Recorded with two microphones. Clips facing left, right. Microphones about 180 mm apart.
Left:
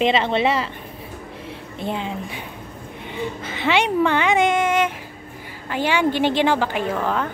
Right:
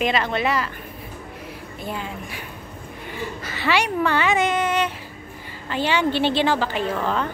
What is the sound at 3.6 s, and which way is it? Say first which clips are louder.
Speech: left 2 dB; 20° left (ahead or behind).